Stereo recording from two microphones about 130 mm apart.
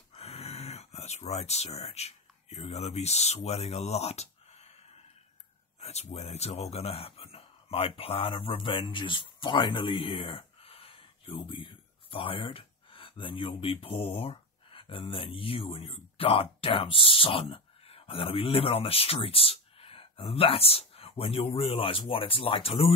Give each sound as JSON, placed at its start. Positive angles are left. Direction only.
{"t": 0.1, "sound": "speech", "side_deg": 50}
{"t": 5.8, "sound": "speech", "side_deg": 55}